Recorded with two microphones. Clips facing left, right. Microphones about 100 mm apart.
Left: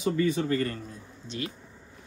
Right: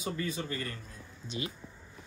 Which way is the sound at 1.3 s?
15° right (ahead or behind).